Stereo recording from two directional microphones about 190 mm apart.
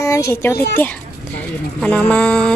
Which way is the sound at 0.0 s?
15° left (ahead or behind).